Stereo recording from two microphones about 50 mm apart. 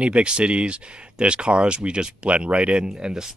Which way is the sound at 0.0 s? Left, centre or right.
Right.